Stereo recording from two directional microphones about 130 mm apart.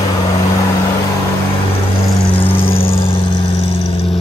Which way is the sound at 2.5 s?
45° left (ahead or behind).